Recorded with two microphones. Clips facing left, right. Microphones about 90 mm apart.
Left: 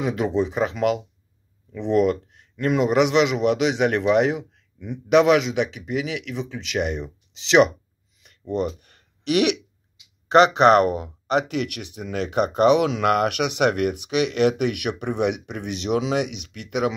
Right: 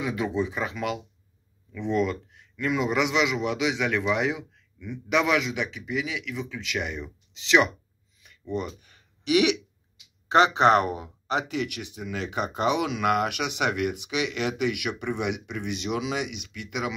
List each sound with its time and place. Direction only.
0.0 s speech: 60° left (ahead or behind)
4.7 s a man's voice: 45° left (ahead or behind)
5.1 s speech: 60° left (ahead or behind)
8.3 s a sound: 60° left (ahead or behind)
10.7 s speech: 60° left (ahead or behind)